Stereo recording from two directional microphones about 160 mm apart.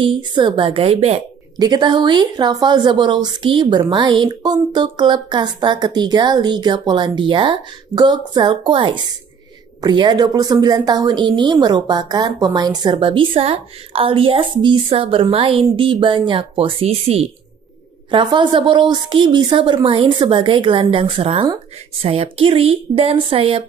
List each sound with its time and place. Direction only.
0.0 s speech: 30° right (ahead or behind)
1.6 s a woman's voice: 25° right (ahead or behind)